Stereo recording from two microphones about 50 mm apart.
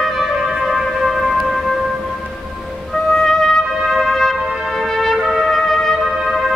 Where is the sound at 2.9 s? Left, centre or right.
Centre.